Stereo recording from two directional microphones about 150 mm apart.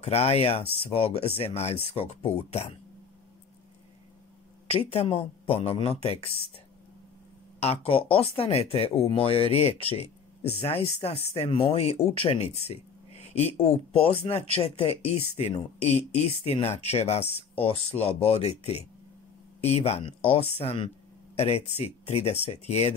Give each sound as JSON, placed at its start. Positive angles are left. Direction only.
{"t": 0.0, "sound": "speech", "side_deg": 45}
{"t": 4.6, "sound": "speech", "side_deg": 40}
{"t": 7.6, "sound": "speech", "side_deg": 40}